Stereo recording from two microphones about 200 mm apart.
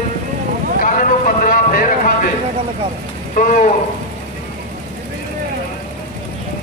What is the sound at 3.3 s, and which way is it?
Speech, 40° left (ahead or behind).